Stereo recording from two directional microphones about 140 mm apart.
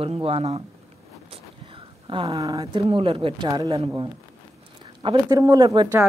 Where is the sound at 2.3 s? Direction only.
25° right (ahead or behind).